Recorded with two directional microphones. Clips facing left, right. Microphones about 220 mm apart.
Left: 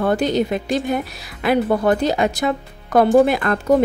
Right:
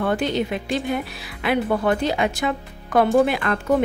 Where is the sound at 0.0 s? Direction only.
40° left (ahead or behind).